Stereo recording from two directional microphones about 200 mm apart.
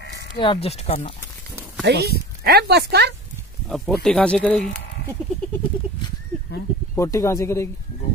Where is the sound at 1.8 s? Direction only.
55° right (ahead or behind).